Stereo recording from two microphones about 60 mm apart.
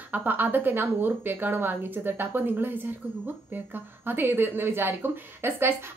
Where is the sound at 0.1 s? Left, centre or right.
Right.